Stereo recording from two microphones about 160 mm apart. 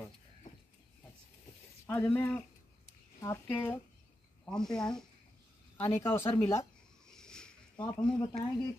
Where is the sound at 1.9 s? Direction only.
10° left (ahead or behind).